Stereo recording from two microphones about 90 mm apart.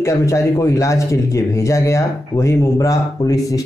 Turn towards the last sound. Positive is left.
turn(degrees=40)  # may be behind; listen again after turning